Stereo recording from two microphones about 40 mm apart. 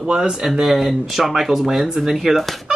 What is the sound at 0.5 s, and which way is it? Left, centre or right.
Speech, centre.